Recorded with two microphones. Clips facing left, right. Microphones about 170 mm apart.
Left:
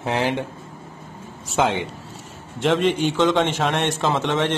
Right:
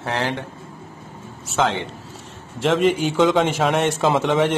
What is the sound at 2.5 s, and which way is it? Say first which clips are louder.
A man's voice: right 1 dB; centre (ahead or behind).